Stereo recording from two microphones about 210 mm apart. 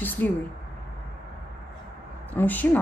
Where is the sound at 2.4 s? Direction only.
10° left (ahead or behind).